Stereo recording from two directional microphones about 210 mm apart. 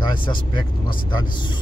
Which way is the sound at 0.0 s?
25° left (ahead or behind).